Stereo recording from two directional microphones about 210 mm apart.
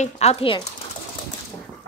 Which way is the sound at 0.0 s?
30° left (ahead or behind).